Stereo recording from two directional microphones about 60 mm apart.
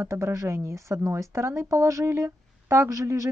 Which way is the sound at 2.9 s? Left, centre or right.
Right.